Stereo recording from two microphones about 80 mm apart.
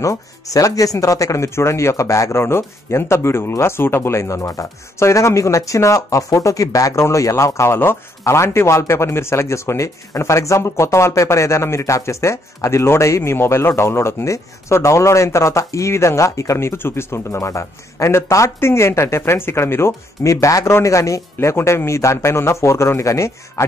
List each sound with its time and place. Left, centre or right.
0.0 s a man's voice: left
17.4 s a man's voice: left